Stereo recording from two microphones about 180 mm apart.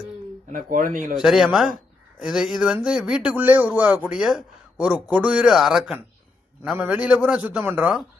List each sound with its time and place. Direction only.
0.5 s speech: 50° right (ahead or behind)
1.1 s a man's voice: centre (ahead or behind)